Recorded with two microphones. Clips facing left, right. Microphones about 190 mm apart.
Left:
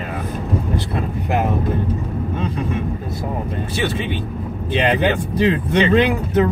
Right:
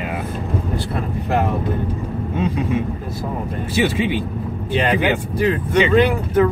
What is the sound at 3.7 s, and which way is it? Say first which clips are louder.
Speech: right 5 dB; 10° right (ahead or behind).